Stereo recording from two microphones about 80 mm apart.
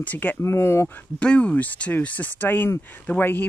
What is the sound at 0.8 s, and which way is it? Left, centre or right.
Speech, centre.